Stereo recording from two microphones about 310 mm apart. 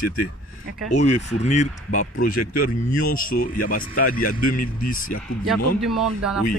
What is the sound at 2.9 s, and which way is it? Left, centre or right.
Speech, left.